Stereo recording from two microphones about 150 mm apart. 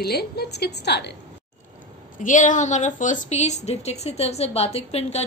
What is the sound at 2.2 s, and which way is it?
A woman's voice, 55° left (ahead or behind).